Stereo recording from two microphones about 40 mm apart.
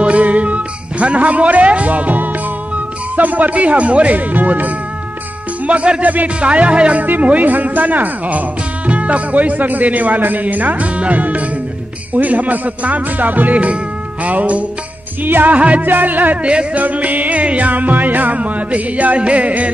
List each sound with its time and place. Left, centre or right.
0.0 s music: right
5.7 s speech: right
15.2 s music: right
15.5 s speech: right
15.9 s music: right
16.7 s speech: right